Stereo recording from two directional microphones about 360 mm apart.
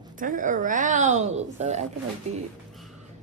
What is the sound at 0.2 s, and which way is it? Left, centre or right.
A woman's voice, right.